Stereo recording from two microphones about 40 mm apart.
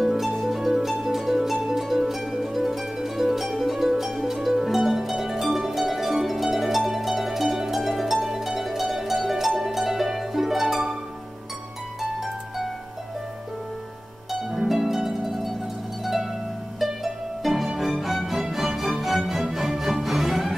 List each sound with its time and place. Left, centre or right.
0.0 s music: centre
0.4 s harp: centre
9.6 s music: centre
12.0 s harp: centre
14.7 s harp: centre
16.8 s music: centre